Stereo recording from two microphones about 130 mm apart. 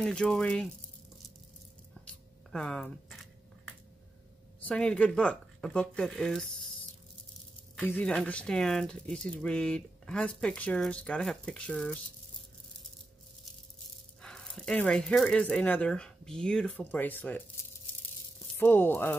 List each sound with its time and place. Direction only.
0.0 s speech: 5° left (ahead or behind)
2.0 s a sound: 5° left (ahead or behind)
4.6 s speech: 10° left (ahead or behind)
7.7 s speech: 10° left (ahead or behind)
14.2 s speech: 5° left (ahead or behind)
18.6 s speech: 15° left (ahead or behind)